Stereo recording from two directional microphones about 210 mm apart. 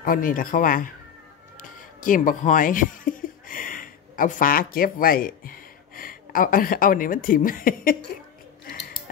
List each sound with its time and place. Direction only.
0.0 s speech: 40° left (ahead or behind)